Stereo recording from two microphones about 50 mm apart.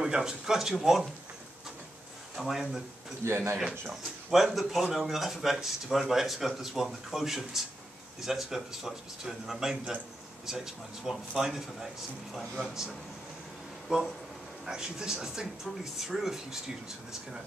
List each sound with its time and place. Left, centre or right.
0.0 s speech: centre
2.3 s speech: centre
3.3 s speech: right
3.8 s speech: centre
12.4 s speech: centre
13.9 s speech: centre